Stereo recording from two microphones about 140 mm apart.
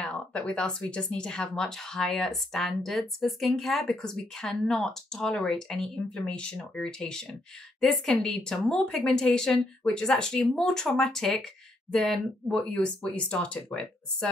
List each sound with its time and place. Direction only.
0.0 s speech: 5° left (ahead or behind)